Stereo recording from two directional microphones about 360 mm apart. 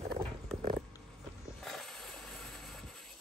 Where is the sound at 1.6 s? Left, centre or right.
Centre.